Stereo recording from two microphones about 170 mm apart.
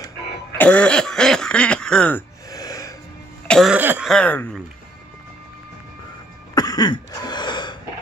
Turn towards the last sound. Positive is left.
turn(degrees=25)  # may be behind; listen again after turning